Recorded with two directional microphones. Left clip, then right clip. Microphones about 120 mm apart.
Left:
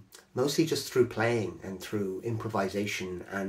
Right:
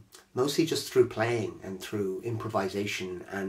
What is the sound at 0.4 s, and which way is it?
Speech, 20° right (ahead or behind).